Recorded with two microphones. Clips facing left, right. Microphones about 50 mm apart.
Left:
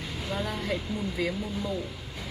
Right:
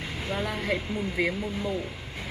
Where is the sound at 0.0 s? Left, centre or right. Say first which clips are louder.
Right 2 dB; right.